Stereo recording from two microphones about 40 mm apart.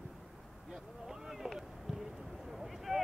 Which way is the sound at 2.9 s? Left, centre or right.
Centre.